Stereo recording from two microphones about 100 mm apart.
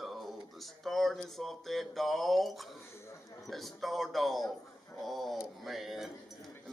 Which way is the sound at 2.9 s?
30° left (ahead or behind).